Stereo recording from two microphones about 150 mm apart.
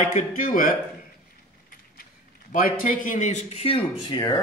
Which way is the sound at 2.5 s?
60° left (ahead or behind).